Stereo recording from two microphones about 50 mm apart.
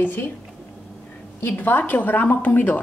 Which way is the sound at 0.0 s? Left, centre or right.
Left.